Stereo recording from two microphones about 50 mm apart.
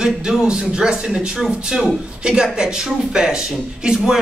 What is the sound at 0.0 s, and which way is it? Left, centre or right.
Speech, centre.